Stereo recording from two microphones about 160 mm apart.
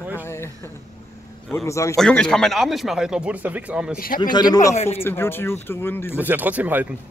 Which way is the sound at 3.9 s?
65° left (ahead or behind).